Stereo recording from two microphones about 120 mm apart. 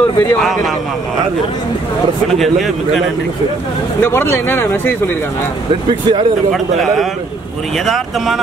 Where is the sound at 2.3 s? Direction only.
Centre (ahead or behind).